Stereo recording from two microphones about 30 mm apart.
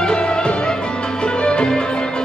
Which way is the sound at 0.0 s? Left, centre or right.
Left.